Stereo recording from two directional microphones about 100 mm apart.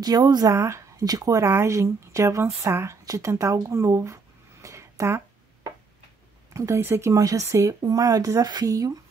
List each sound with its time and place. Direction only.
0.0 s speech: 40° right (ahead or behind)
6.5 s speech: 30° right (ahead or behind)